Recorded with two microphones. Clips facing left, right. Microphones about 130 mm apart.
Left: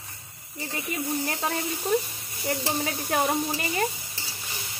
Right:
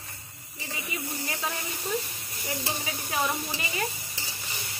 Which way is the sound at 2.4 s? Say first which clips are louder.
Left 6 dB; 55° left (ahead or behind).